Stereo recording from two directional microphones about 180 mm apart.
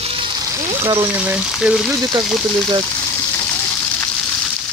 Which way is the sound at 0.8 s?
20° right (ahead or behind).